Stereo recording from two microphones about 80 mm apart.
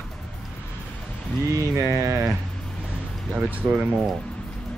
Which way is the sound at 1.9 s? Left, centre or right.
Right.